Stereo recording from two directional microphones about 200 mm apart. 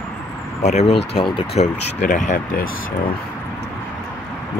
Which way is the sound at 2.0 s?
40° left (ahead or behind).